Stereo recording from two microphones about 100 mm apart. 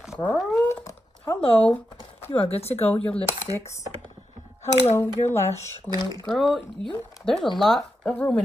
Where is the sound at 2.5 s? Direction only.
90° left.